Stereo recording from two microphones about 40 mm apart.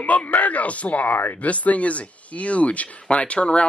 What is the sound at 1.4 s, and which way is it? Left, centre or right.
Speech, left.